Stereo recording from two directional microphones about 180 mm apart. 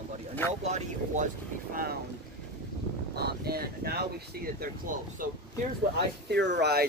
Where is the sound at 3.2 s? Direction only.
60° right (ahead or behind).